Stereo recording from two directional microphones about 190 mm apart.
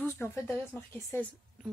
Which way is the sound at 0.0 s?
10° left (ahead or behind).